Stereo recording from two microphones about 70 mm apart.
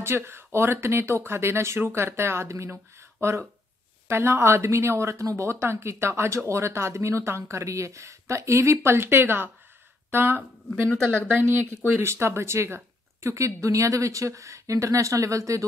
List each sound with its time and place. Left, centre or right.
0.0 s speech: right